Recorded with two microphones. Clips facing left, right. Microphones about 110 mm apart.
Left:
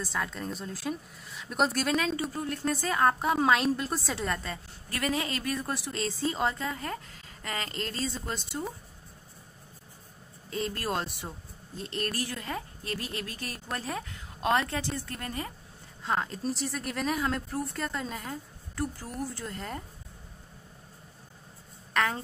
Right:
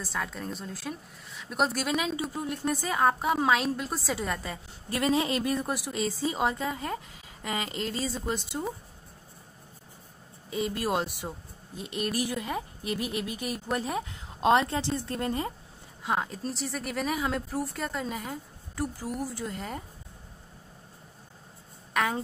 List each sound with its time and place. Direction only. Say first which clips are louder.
0.0 s a woman's voice: left 1 dB; centre (ahead or behind)
10.5 s a woman's voice: right 3 dB; 10° right (ahead or behind)
16.0 s speech: even; 10° right (ahead or behind)
21.9 s speech: right 1 dB; 10° right (ahead or behind)